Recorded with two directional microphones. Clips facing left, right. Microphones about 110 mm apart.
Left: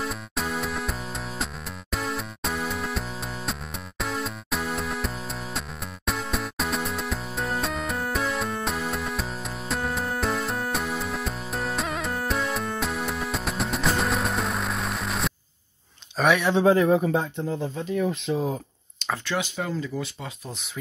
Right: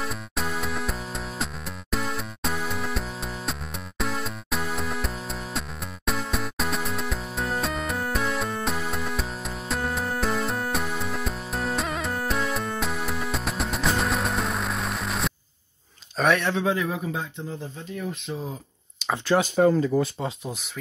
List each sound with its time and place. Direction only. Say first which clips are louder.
0.0 s music: left 1 dB; centre (ahead or behind)
4.0 s music: even; centre (ahead or behind)
16.2 s a sound: left 1 dB; 5° left (ahead or behind)
16.5 s speech: left 7 dB; 40° left (ahead or behind)
18.2 s speech: left 7 dB; 90° left
19.2 s speech: right 12 dB; 40° right (ahead or behind)